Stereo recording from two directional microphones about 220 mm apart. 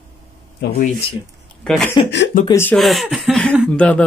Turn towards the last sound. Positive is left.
turn(degrees=5)  # may be behind; listen again after turning